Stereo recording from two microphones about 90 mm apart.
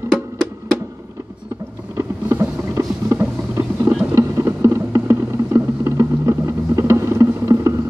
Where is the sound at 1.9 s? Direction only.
30° right (ahead or behind).